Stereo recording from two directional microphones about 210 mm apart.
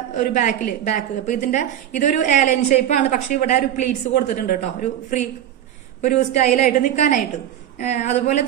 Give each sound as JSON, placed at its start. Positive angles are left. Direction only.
{"t": 0.1, "sound": "a woman's voice", "side_deg": 35}